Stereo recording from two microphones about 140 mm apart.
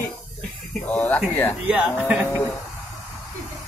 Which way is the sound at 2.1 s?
15° right (ahead or behind).